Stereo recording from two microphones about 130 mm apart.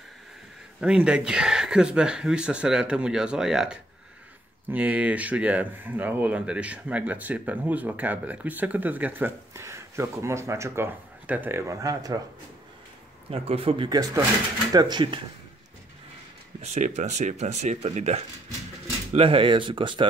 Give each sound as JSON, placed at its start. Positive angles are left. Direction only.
{"t": 0.7, "sound": "speech", "side_deg": -5}
{"t": 13.3, "sound": "speech", "side_deg": -50}
{"t": 13.8, "sound": "speech", "side_deg": -30}
{"t": 16.6, "sound": "speech", "side_deg": -60}
{"t": 19.1, "sound": "speech", "side_deg": -45}